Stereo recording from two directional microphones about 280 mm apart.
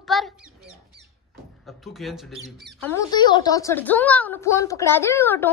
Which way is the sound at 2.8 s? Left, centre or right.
Centre.